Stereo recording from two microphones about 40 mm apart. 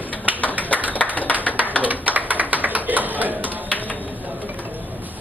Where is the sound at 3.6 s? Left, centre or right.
Left.